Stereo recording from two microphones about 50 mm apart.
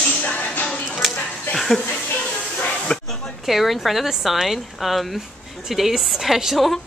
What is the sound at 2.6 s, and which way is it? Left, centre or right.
Snake, left.